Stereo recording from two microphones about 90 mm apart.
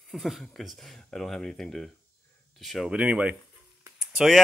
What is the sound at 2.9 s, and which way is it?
Speech, 15° right (ahead or behind).